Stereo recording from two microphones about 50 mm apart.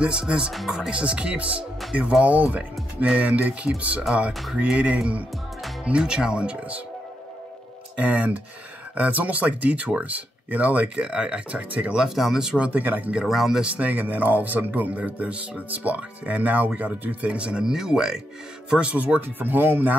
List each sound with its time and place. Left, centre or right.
0.0 s speech: centre
0.5 s speech: centre
0.7 s speech: centre
4.3 s speech: centre
4.7 s speech: right
8.0 s speech: right
12.2 s speech: centre
12.5 s speech: right
12.8 s speech: right
13.2 s speech: centre
13.7 s speech: right
17.6 s speech: centre
18.7 s speech: right
19.2 s speech: right